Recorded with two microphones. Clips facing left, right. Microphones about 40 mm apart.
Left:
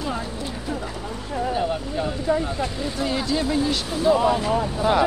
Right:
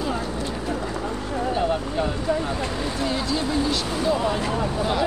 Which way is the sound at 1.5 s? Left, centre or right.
Centre.